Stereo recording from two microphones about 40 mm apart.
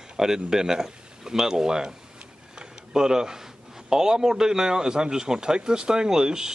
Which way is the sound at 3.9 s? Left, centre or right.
Centre.